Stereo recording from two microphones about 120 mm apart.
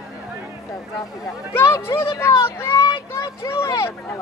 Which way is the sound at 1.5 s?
20° left (ahead or behind).